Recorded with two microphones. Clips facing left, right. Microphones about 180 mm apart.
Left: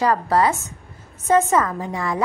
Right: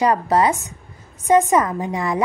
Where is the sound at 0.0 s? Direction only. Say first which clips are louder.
Right 1 dB; 20° right (ahead or behind).